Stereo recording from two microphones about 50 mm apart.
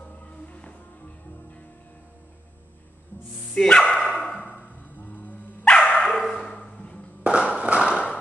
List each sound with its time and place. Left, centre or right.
0.2 s music: left
3.5 s speech: centre
4.0 s dog: centre
4.4 s dog: left
5.7 s dog: left
5.9 s dog: centre
6.4 s a sound: centre
7.2 s a sound: centre